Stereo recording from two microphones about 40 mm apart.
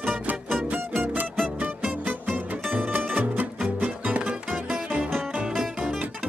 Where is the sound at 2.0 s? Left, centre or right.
Right.